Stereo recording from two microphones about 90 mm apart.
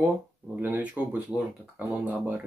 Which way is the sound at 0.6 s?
20° right (ahead or behind).